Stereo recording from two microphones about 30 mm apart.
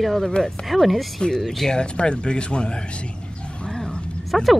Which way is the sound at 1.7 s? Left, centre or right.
Left.